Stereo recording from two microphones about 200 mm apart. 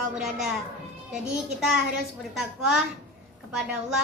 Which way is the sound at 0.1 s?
5° right (ahead or behind).